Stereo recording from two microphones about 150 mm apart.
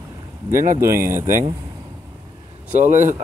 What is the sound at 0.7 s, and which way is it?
Speech, 15° right (ahead or behind).